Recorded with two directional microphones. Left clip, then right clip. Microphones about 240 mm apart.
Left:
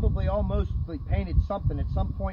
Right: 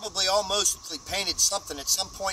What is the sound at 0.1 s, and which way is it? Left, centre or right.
Speech, centre.